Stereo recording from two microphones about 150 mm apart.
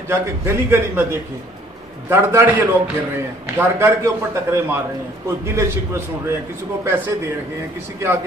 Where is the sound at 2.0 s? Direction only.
15° right (ahead or behind).